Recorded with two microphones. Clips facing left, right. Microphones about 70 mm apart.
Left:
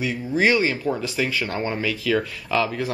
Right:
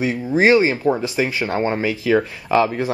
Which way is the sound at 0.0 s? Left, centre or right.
Right.